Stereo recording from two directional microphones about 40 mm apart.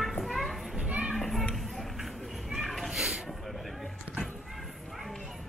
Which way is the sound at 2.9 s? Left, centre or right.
Centre.